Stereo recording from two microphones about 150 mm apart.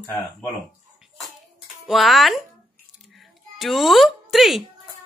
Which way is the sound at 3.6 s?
Centre (ahead or behind).